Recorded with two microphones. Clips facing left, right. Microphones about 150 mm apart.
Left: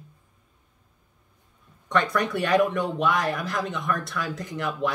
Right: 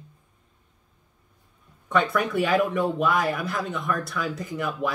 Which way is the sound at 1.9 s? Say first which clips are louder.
Right 1 dB; 5° right (ahead or behind).